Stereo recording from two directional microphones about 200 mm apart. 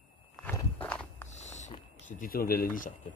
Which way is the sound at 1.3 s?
35° left (ahead or behind).